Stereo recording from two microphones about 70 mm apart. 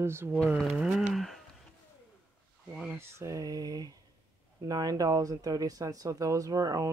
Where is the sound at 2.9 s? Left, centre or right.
Right.